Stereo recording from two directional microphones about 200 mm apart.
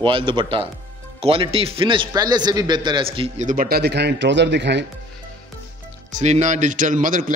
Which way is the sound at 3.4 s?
45° right (ahead or behind).